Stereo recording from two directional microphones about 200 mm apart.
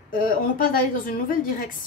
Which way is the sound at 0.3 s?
45° left (ahead or behind).